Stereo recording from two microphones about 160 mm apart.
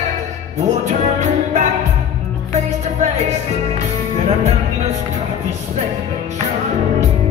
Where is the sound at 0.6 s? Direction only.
45° right (ahead or behind).